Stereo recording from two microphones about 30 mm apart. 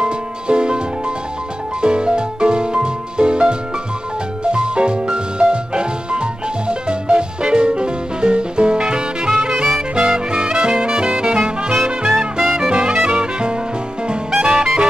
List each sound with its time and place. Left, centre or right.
0.0 s music: right
12.4 s music: centre
12.7 s music: right
14.4 s brass instrument: right